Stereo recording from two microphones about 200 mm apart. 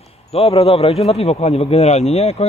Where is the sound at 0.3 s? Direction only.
30° left (ahead or behind).